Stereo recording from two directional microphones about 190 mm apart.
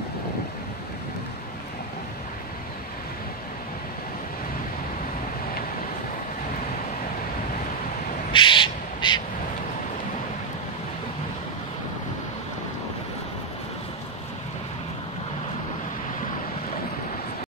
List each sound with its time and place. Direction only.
8.3 s crow: 25° left (ahead or behind)